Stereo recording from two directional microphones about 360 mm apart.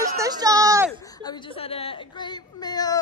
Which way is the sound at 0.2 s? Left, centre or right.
Centre.